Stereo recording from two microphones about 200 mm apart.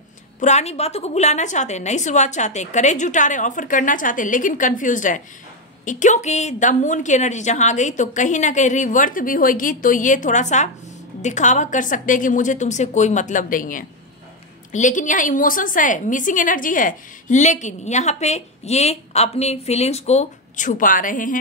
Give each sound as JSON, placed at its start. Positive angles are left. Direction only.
{"t": 0.4, "sound": "a woman's voice", "side_deg": 35}